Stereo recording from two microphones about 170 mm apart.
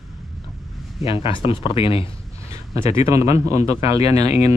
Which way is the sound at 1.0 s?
30° left (ahead or behind).